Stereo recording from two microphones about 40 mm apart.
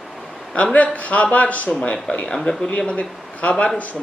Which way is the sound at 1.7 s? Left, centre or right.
Left.